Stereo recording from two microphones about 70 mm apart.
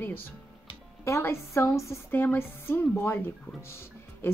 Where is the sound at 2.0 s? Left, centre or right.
Left.